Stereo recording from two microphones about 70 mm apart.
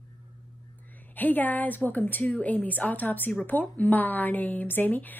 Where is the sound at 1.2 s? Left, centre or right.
Left.